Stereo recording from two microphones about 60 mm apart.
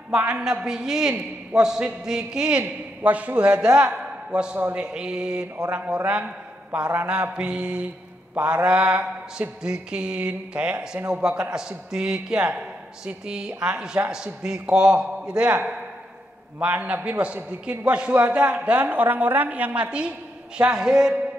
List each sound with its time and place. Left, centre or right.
0.4 s a man's voice: centre
3.0 s a man's voice: right; by 5.5 s centre
5.7 s a woman's voice: right
7.1 s a man's voice: centre
16.5 s a woman's voice: right